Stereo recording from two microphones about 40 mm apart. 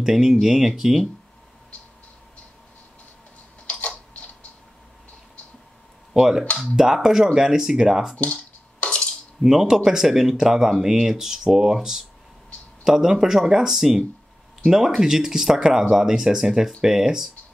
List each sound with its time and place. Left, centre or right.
0.0 s speech: centre
3.7 s typing: centre
6.1 s speech: centre
8.3 s a sound: left
9.4 s speech: centre